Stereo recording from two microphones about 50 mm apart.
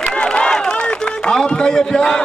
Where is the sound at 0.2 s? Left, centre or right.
Centre.